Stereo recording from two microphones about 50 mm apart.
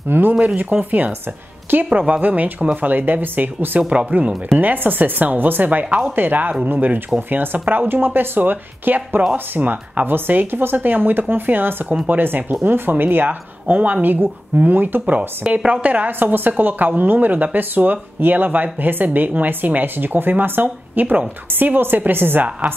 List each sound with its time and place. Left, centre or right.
0.1 s speech: right
10.0 s a woman's voice: right
16.1 s speech: right